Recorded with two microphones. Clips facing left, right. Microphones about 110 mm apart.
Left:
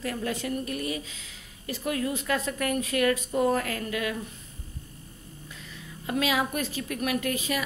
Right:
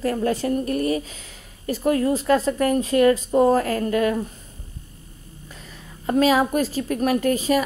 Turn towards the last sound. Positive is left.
turn(degrees=-35)  # may be behind; listen again after turning